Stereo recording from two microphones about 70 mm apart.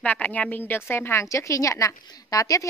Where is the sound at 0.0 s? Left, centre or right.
Left.